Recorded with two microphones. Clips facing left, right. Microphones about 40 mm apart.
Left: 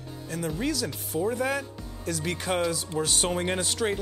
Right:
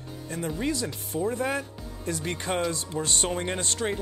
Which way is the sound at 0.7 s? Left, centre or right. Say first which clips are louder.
Left 1 dB; right.